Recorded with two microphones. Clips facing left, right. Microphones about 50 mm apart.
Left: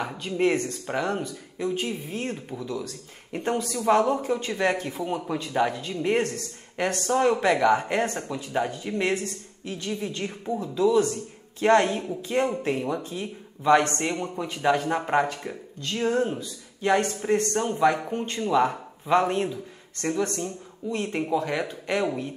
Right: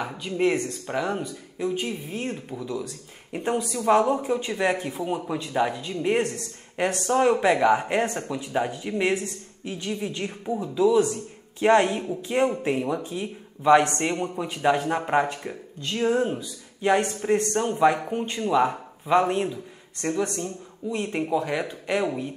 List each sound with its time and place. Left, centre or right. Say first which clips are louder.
0.0 s speech: even; centre
14.3 s a man's voice: left 1 dB; centre
20.9 s speech: right 1 dB; centre